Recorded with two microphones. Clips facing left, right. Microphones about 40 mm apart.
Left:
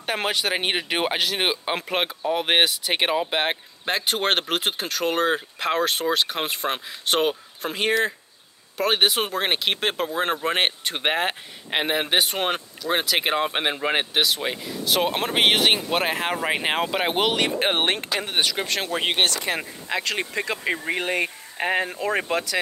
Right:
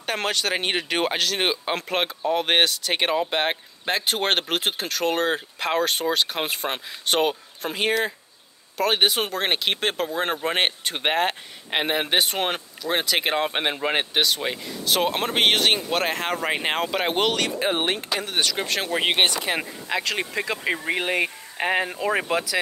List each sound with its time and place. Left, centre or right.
0.0 s speech: centre
17.6 s speech: left
18.4 s speech: centre
19.0 s speech: centre
19.9 s speech: centre